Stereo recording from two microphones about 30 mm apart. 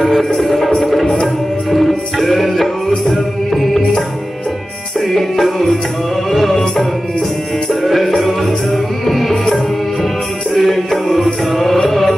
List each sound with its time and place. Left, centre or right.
0.0 s music: centre
1.0 s music: centre
1.7 s music: centre
5.0 s music: centre
7.9 s music: centre
10.5 s music: centre